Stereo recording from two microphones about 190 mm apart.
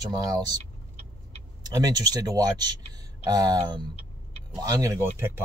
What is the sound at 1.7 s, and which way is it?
Speech, 20° right (ahead or behind).